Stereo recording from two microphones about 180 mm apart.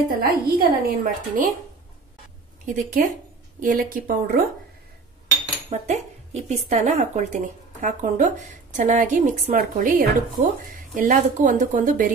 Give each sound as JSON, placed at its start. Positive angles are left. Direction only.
{"t": 0.2, "sound": "a woman's voice", "side_deg": -55}
{"t": 2.6, "sound": "a woman's voice", "side_deg": -45}
{"t": 5.7, "sound": "a woman's voice", "side_deg": -35}